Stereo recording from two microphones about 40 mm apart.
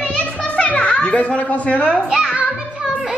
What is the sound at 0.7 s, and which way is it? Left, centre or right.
Music, left.